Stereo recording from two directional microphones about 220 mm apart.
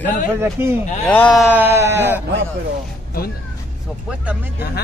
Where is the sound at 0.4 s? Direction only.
10° right (ahead or behind).